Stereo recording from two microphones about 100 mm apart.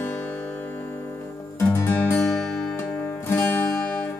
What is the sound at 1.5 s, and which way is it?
Music, 20° left (ahead or behind).